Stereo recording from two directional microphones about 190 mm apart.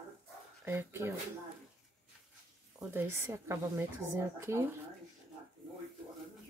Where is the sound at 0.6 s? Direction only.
15° right (ahead or behind).